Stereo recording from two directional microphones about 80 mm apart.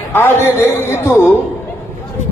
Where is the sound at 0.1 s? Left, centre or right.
Left.